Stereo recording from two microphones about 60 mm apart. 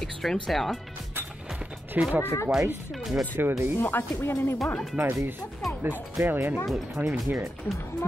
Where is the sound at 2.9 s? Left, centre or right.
Centre.